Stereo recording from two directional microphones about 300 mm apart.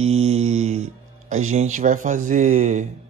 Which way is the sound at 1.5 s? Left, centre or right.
Right.